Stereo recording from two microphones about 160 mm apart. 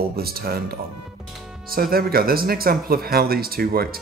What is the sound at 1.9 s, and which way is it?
Speech, 70° right (ahead or behind).